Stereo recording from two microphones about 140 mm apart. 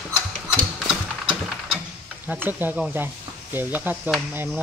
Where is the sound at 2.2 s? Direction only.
15° right (ahead or behind).